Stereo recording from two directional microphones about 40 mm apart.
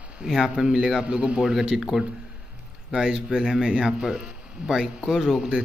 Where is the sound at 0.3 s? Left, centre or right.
Centre.